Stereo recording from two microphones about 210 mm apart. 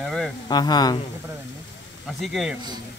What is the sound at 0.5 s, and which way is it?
Speech, 20° left (ahead or behind).